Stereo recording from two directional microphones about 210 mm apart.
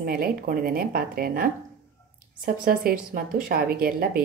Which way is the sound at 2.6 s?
40° right (ahead or behind).